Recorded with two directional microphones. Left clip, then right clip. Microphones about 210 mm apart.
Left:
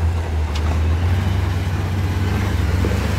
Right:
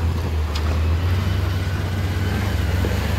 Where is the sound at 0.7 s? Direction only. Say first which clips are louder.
Left 1 dB; 40° left (ahead or behind).